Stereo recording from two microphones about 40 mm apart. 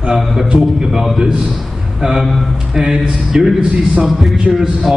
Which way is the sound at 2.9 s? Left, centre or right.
Centre.